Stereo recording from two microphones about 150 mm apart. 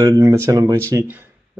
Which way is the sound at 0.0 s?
20° right (ahead or behind).